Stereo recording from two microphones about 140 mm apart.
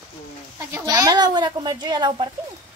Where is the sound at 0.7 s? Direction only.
25° right (ahead or behind).